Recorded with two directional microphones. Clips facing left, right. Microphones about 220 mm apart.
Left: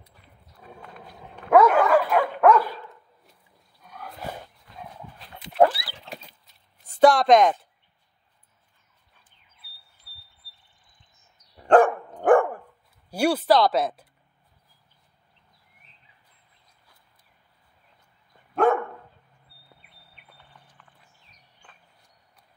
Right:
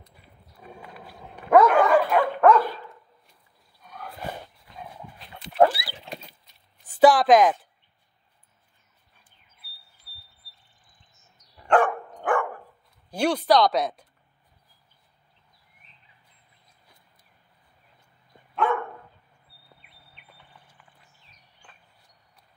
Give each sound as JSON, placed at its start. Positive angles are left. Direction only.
{"t": 0.1, "sound": "dog", "side_deg": -10}
{"t": 1.5, "sound": "dog", "side_deg": 5}
{"t": 5.8, "sound": "a sound", "side_deg": -10}
{"t": 11.6, "sound": "dog", "side_deg": 40}
{"t": 13.1, "sound": "speech", "side_deg": 10}
{"t": 18.5, "sound": "dog", "side_deg": 45}